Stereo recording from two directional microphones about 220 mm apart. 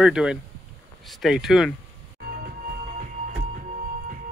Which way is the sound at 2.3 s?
45° right (ahead or behind).